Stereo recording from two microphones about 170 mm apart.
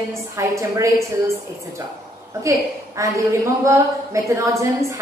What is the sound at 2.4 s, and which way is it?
A woman's voice, 20° right (ahead or behind).